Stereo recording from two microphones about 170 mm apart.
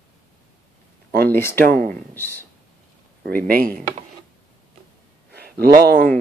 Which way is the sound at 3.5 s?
60° right (ahead or behind).